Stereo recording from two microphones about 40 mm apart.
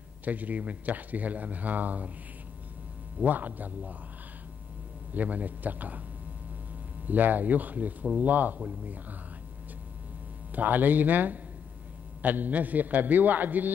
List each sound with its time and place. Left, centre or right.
0.2 s speech: right
3.3 s a man's voice: right
5.1 s a man's voice: right
7.1 s a man's voice: right
8.5 s speech: right
10.5 s a man's voice: right